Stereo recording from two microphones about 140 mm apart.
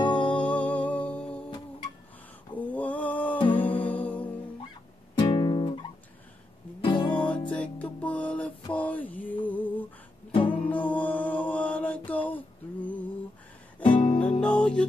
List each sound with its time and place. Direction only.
0.0 s music: 35° left (ahead or behind)
0.3 s music: 10° left (ahead or behind)
2.5 s a sound: 10° left (ahead or behind)
3.5 s music: 10° left (ahead or behind)
5.3 s music: 35° left (ahead or behind)
7.1 s music: 10° left (ahead or behind)
8.7 s a sound: 10° left (ahead or behind)
10.5 s music: 10° left (ahead or behind)
13.9 s music: 40° left (ahead or behind)
14.4 s music: 5° left (ahead or behind)